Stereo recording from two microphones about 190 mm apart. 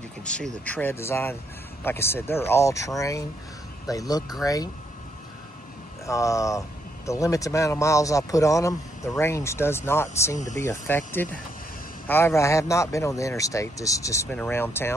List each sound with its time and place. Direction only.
0.2 s speech: 5° left (ahead or behind)
6.0 s speech: 15° left (ahead or behind)